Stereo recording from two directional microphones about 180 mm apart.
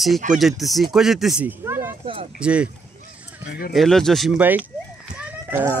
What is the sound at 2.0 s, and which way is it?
Speech, 30° right (ahead or behind).